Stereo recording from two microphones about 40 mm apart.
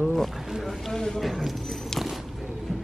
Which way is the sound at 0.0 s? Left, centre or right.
Centre.